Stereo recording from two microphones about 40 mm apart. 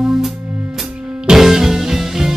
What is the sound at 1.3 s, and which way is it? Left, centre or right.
Music, centre.